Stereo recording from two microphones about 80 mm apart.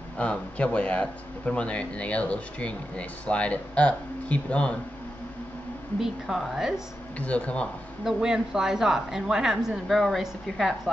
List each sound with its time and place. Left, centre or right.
0.2 s speech: centre
5.9 s a woman's voice: centre
7.2 s speech: centre
8.0 s a woman's voice: centre